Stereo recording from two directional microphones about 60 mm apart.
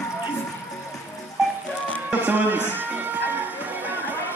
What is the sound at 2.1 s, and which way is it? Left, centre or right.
Music, right.